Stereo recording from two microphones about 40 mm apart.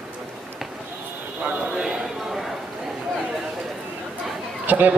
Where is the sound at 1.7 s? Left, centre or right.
Centre.